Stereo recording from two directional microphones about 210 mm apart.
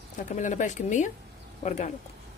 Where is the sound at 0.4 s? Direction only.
35° left (ahead or behind).